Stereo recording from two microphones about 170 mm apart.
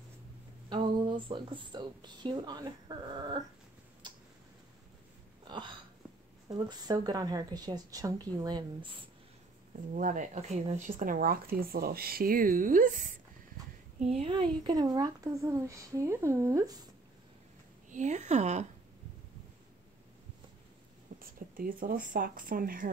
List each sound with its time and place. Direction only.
0.7 s a woman's voice: 30° right (ahead or behind)
5.5 s hiccup: 30° right (ahead or behind)
6.5 s a woman's voice: 25° right (ahead or behind)
9.9 s speech: 50° right (ahead or behind)
13.9 s a woman's voice: 40° right (ahead or behind)
14.6 s a woman's voice: 25° right (ahead or behind)
17.8 s speech: 45° right (ahead or behind)
21.2 s speech: 55° right (ahead or behind)